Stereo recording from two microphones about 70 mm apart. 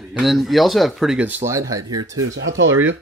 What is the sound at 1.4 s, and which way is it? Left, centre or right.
Speech, right.